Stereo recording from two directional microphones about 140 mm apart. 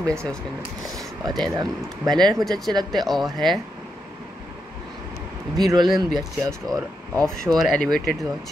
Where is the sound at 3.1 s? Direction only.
Centre (ahead or behind).